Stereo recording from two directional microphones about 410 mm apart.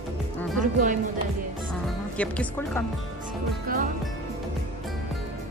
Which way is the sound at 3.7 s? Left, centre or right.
Centre.